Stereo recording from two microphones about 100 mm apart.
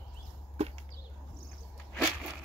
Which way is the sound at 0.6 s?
90° right.